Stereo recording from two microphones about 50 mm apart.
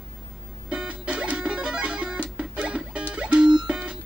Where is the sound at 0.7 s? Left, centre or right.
Right.